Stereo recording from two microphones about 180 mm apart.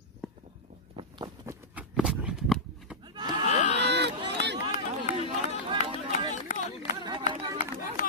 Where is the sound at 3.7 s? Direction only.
75° right (ahead or behind).